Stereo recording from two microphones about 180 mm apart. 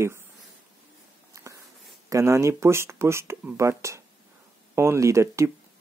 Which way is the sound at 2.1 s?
15° right (ahead or behind).